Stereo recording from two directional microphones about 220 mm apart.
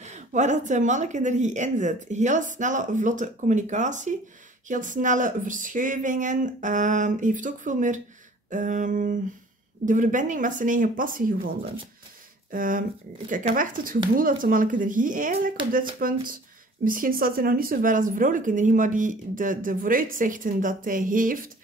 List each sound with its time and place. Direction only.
0.1 s speech: 35° right (ahead or behind)